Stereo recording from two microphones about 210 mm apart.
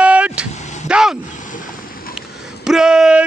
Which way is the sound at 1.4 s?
40° left (ahead or behind).